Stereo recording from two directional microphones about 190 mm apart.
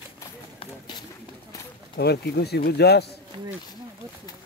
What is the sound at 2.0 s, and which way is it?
Speech, 60° left (ahead or behind).